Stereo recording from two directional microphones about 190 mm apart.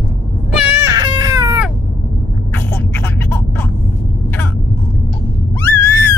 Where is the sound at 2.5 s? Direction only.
10° left (ahead or behind).